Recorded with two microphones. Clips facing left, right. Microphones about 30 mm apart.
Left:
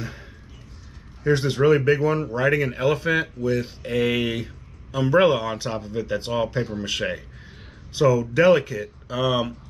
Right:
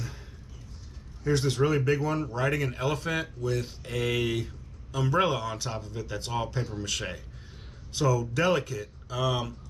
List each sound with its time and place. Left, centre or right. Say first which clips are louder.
1.2 s speech: left 6 dB; left